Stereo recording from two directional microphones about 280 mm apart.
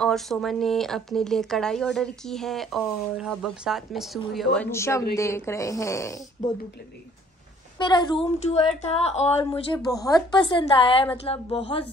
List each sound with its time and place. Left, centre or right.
0.0 s a woman's voice: centre
7.9 s speech: centre
9.8 s a woman's voice: centre